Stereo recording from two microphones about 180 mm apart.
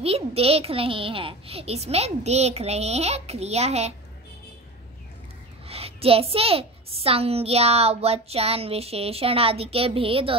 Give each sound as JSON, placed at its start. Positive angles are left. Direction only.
{"t": 0.0, "sound": "a woman's voice", "side_deg": -35}
{"t": 5.7, "sound": "a woman's voice", "side_deg": -35}